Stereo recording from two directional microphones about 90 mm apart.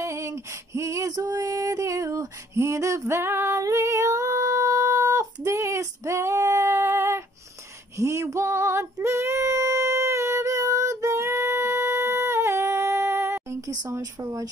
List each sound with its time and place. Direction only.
0.0 s female singing: 35° right (ahead or behind)
13.7 s speech: 35° right (ahead or behind)